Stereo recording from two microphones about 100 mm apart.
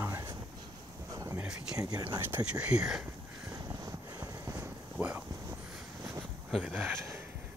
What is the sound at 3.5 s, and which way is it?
Vehicle, 40° right (ahead or behind).